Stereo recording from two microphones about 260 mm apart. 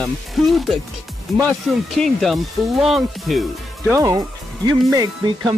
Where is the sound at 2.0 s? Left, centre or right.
Centre.